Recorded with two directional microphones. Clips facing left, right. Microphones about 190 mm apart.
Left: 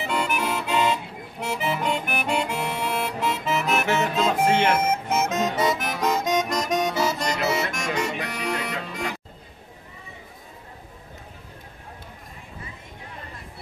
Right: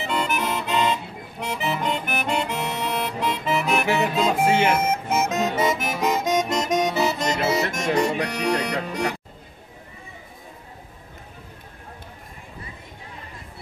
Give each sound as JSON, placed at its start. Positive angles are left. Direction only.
{"t": 0.0, "sound": "accordion", "side_deg": 10}
{"t": 1.4, "sound": "music", "side_deg": 5}
{"t": 3.8, "sound": "music", "side_deg": -10}
{"t": 6.2, "sound": "accordion", "side_deg": -20}